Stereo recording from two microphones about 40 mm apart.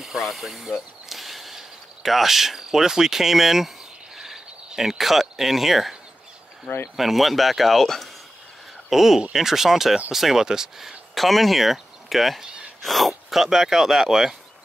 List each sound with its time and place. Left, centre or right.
0.0 s speech: centre
1.0 s a sound: centre
4.2 s speech: centre
6.7 s speech: left
7.0 s speech: centre
8.9 s speech: centre
11.1 s speech: centre